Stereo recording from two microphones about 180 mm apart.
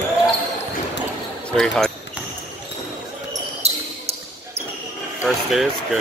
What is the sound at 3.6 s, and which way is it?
Basketball bounce, 35° right (ahead or behind).